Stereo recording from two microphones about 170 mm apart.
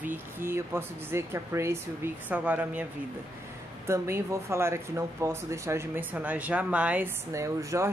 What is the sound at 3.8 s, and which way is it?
Speech, 15° right (ahead or behind).